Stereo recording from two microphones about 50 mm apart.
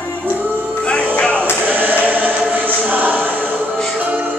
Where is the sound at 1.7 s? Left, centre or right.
Right.